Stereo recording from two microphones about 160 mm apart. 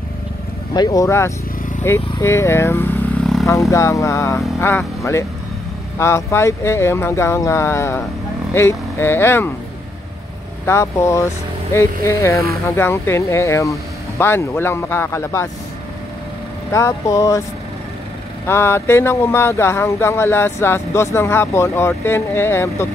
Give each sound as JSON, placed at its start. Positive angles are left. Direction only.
{"t": 0.7, "sound": "speech", "side_deg": 20}
{"t": 10.6, "sound": "speech", "side_deg": 15}
{"t": 16.7, "sound": "speech", "side_deg": 20}
{"t": 18.5, "sound": "speech", "side_deg": 15}